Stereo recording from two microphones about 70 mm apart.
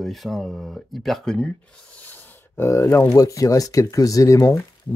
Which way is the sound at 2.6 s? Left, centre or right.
Left.